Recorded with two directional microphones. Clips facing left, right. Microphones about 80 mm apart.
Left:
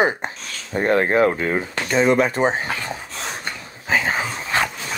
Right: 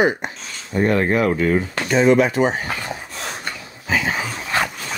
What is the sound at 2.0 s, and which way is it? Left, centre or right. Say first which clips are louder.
Speech: right 2 dB; left.